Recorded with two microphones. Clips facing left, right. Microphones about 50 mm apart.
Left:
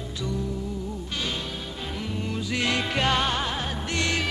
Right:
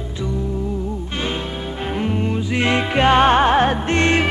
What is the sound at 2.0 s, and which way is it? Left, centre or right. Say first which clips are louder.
Music: right 11 dB; right.